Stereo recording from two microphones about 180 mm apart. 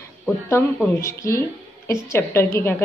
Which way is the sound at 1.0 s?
15° left (ahead or behind).